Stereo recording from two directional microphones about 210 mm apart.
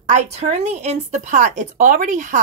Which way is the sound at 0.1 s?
30° right (ahead or behind).